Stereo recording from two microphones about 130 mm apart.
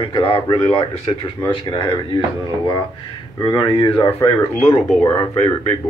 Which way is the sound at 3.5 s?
35° left (ahead or behind).